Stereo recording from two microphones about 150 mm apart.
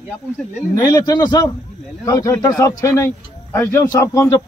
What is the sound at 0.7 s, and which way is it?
A man's voice, 25° left (ahead or behind).